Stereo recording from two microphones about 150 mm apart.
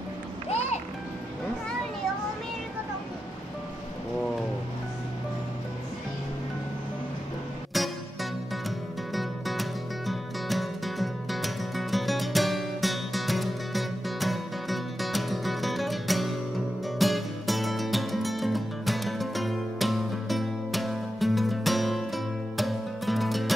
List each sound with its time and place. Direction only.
0.5 s music: 45° left (ahead or behind)
7.7 s music: centre (ahead or behind)